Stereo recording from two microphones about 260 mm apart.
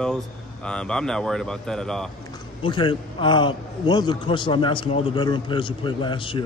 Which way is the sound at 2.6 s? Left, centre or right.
Centre.